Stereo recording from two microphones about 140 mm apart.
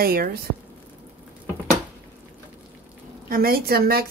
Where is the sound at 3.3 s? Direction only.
90° right.